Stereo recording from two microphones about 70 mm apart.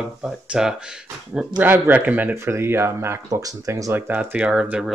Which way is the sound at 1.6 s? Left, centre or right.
Right.